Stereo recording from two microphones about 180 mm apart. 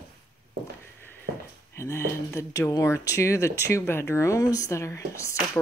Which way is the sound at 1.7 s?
15° left (ahead or behind).